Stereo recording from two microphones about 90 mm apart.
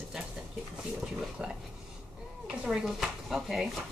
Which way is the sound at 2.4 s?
5° right (ahead or behind).